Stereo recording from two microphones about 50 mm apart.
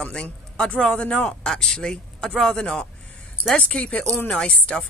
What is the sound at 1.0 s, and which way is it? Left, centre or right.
Speech, left.